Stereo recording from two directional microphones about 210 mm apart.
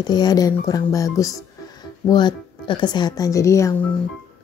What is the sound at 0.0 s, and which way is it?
A woman's voice, 20° left (ahead or behind).